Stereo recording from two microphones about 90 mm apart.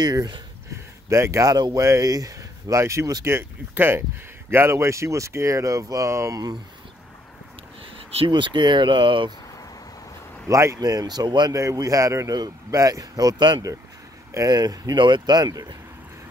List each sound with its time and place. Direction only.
0.0 s speech: 50° right (ahead or behind)
3.3 s speech: 25° right (ahead or behind); by 6.6 s 45° right (ahead or behind)
8.3 s speech: 60° right (ahead or behind)
10.5 s speech: 35° right (ahead or behind)
10.8 s speech: 45° right (ahead or behind)
11.5 s speech: 35° right (ahead or behind)